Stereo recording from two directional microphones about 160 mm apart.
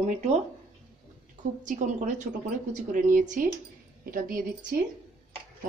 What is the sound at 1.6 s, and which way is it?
A woman's voice, 55° right (ahead or behind).